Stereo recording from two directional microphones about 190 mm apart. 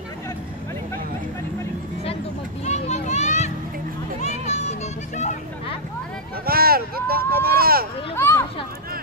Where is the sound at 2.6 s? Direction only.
35° left (ahead or behind).